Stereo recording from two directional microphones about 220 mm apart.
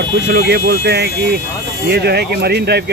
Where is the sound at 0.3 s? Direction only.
50° right (ahead or behind).